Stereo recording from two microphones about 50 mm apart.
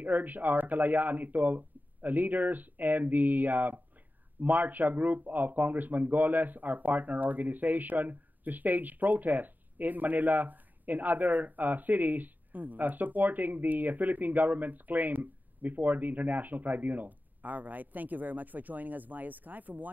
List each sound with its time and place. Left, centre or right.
0.0 s speech: right